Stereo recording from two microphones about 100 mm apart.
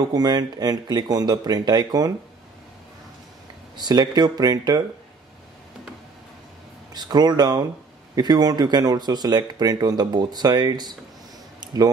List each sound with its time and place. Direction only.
0.1 s speech: 40° right (ahead or behind)
3.7 s speech: 45° right (ahead or behind)
6.9 s speech: 45° right (ahead or behind)
11.6 s a sound: 40° right (ahead or behind)